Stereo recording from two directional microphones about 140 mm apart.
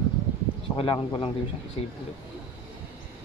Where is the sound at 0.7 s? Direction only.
35° left (ahead or behind).